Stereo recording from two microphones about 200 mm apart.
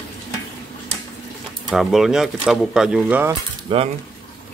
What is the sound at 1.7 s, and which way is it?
Speech, centre (ahead or behind).